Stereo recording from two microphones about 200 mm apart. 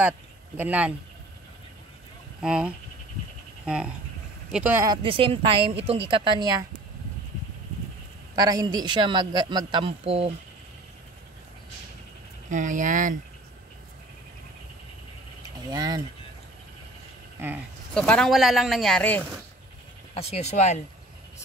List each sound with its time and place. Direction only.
0.6 s speech: 5° right (ahead or behind)
2.4 s speech: 5° right (ahead or behind)
4.8 s a man's voice: 25° right (ahead or behind)
8.4 s a man's voice: 20° right (ahead or behind)
12.4 s speech: 40° right (ahead or behind)
15.7 s a man's voice: 20° right (ahead or behind)
17.4 s speech: 10° right (ahead or behind)
17.9 s speech: 5° left (ahead or behind)
20.2 s speech: 30° left (ahead or behind)